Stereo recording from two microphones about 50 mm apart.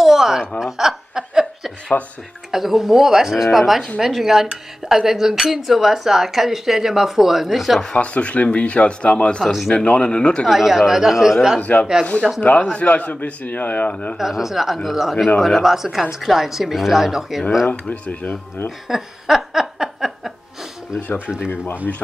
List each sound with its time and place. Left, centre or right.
0.0 s a sound: centre
0.6 s chuckle: centre
1.9 s a man's voice: left
2.5 s speech: centre
7.9 s speech: left
10.4 s speech: centre
11.6 s a man's voice: left
14.1 s speech: centre
17.6 s a man's voice: left
18.9 s a sound: centre